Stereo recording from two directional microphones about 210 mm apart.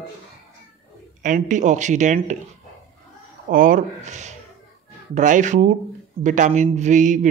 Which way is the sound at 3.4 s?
40° right (ahead or behind).